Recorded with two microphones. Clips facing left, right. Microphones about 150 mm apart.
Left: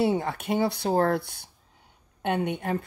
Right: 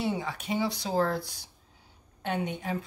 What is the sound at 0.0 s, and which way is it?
Speech, 55° left (ahead or behind).